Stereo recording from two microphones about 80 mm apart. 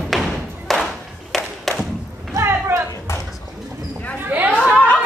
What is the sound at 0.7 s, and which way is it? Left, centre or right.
Clapping, centre.